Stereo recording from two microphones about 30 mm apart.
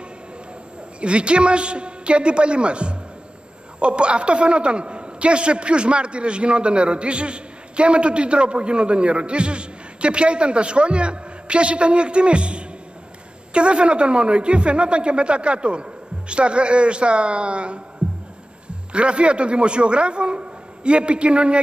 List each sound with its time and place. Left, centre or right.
1.0 s a man's voice: right
18.0 s music: right
18.9 s a man's voice: right